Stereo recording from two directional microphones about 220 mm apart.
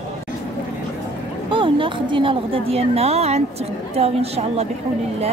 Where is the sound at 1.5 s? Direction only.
20° right (ahead or behind).